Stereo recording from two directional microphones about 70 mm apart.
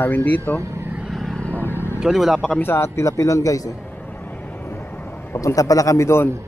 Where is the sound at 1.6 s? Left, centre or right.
Left.